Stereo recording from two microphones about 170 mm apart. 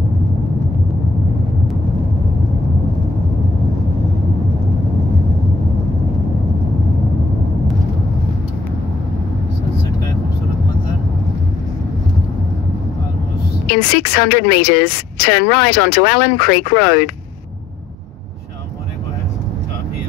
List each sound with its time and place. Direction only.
13.7 s a woman's voice: 65° left (ahead or behind)